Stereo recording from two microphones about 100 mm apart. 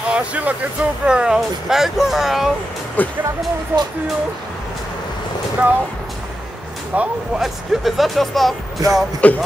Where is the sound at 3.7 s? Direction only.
20° right (ahead or behind).